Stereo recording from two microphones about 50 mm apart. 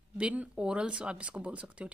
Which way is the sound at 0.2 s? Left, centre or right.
Right.